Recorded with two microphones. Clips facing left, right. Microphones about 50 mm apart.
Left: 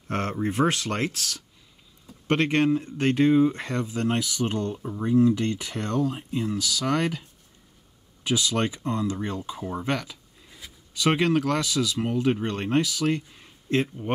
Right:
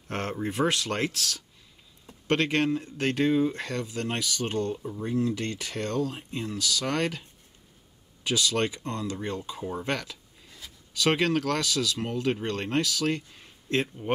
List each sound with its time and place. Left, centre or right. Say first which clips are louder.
0.1 s speech: left 4 dB; left
2.2 s speech: left 3 dB; left
8.3 s speech: left 1 dB; left
9.7 s a sound: left 2 dB; centre
11.0 s speech: left 2 dB; left
14.0 s speech: even; centre